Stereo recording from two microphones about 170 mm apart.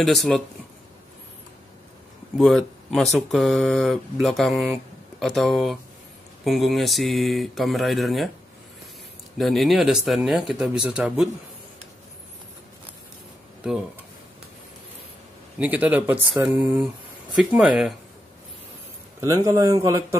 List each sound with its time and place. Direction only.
0.0 s speech: centre (ahead or behind)
2.3 s speech: centre (ahead or behind)
9.4 s speech: centre (ahead or behind)
15.6 s speech: 10° right (ahead or behind)
19.2 s a man's voice: 20° right (ahead or behind)